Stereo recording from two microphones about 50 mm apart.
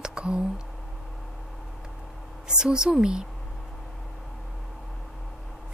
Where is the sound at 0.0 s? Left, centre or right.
Centre.